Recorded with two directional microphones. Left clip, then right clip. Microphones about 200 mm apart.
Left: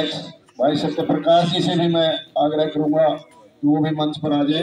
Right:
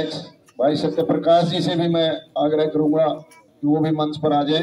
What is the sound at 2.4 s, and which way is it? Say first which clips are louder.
Speech: right 1 dB; 25° right (ahead or behind).